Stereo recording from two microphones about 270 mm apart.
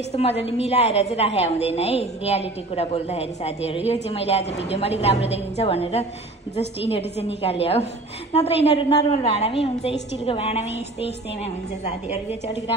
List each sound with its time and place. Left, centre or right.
0.1 s a woman's voice: left
7.4 s a woman's voice: left
11.8 s a woman's voice: left